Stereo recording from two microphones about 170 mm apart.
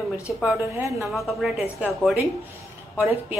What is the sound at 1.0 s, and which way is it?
A woman's voice, centre (ahead or behind).